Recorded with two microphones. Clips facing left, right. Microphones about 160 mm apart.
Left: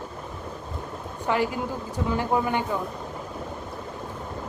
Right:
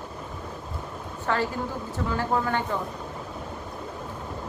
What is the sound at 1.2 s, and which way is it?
A woman's voice, 15° left (ahead or behind).